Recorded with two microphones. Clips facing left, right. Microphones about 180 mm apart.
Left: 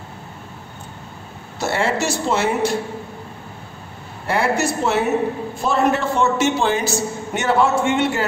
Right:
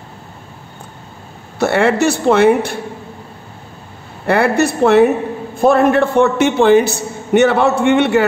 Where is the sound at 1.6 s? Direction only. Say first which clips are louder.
Right 7 dB; 60° right (ahead or behind).